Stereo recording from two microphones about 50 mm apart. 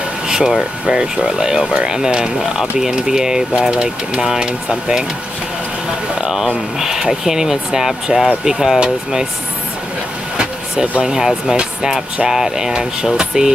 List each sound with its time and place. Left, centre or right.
0.3 s speech: centre
6.2 s speech: centre
10.3 s vehicle: centre
11.0 s speech: centre